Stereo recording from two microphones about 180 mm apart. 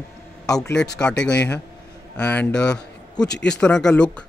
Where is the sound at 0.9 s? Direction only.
5° left (ahead or behind).